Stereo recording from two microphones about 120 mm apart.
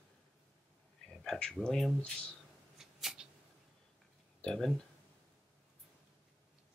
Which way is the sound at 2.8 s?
5° right (ahead or behind).